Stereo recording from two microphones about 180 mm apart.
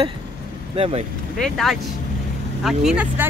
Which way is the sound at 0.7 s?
35° right (ahead or behind).